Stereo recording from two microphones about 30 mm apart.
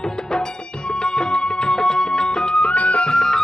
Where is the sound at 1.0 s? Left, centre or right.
Left.